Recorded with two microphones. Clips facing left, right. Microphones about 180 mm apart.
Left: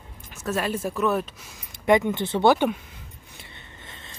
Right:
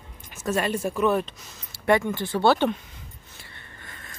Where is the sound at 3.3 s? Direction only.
20° left (ahead or behind).